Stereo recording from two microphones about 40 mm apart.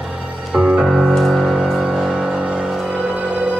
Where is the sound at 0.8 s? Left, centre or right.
Centre.